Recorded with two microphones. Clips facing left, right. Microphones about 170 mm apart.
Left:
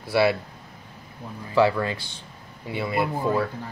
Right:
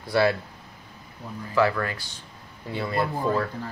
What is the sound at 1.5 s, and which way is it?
Speech, 20° left (ahead or behind).